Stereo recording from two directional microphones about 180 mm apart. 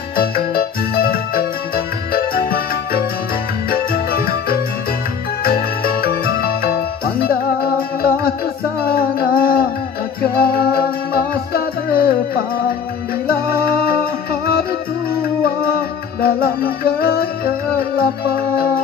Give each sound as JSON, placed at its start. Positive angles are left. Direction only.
{"t": 0.9, "sound": "music", "side_deg": 55}
{"t": 3.7, "sound": "organ", "side_deg": 55}
{"t": 5.4, "sound": "music", "side_deg": 55}
{"t": 8.8, "sound": "music", "side_deg": 55}
{"t": 16.2, "sound": "music", "side_deg": 55}